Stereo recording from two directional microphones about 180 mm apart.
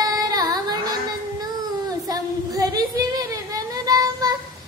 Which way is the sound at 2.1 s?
20° right (ahead or behind).